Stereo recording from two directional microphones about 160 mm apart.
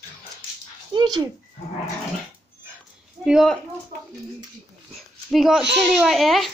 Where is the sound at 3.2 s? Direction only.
5° right (ahead or behind).